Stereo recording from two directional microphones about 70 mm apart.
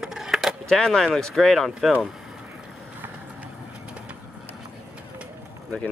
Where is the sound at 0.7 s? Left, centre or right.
Centre.